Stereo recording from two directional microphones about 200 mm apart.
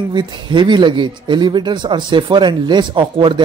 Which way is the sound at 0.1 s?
20° right (ahead or behind).